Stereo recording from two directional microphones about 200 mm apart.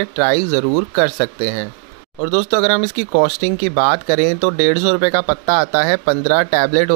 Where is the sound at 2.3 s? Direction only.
40° right (ahead or behind).